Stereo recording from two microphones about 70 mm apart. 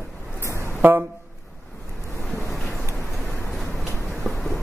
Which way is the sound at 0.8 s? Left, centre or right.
Right.